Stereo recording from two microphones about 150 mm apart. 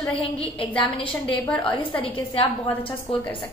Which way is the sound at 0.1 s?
35° left (ahead or behind).